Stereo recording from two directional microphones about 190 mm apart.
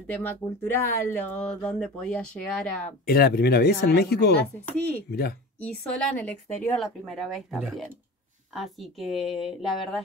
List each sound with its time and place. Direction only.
0.0 s speech: 10° left (ahead or behind)
3.1 s speech: 55° left (ahead or behind)
4.6 s a woman's voice: 10° left (ahead or behind)